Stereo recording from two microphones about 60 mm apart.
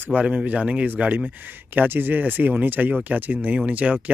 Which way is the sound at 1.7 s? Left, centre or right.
Right.